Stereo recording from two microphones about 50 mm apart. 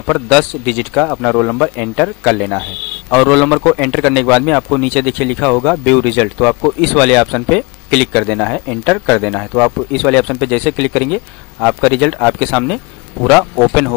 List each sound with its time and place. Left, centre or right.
0.0 s speech: centre
1.0 s speech: centre